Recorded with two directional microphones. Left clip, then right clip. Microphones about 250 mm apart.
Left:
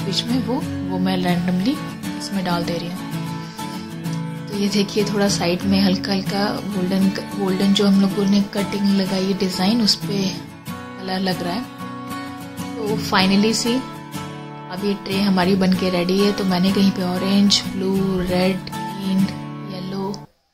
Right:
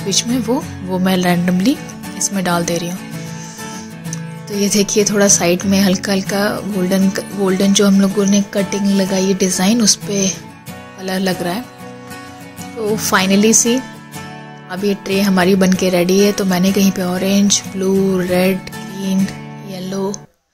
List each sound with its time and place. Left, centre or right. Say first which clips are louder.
0.1 s a woman's voice: right 6 dB; centre
1.0 s music: right 7 dB; centre
2.3 s a woman's voice: right 5 dB; centre
4.6 s a woman's voice: right 6 dB; centre
13.0 s a woman's voice: right 4 dB; centre
14.7 s a woman's voice: right 6 dB; centre
19.8 s music: right 7 dB; centre